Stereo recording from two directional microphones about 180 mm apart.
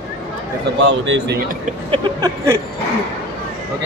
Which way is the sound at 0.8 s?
90° right.